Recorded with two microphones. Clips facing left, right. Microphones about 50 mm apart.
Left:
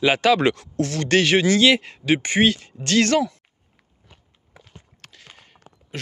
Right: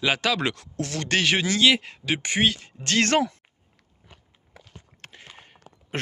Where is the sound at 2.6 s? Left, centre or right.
Centre.